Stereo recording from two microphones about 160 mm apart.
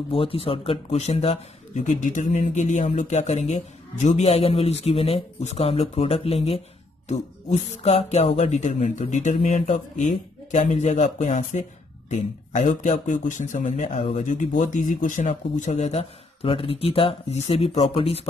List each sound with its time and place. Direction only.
0.1 s speech: 35° left (ahead or behind)
1.9 s speech: 50° left (ahead or behind)